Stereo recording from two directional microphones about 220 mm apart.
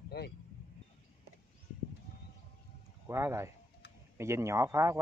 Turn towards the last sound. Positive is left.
turn(degrees=-15)  # may be behind; listen again after turning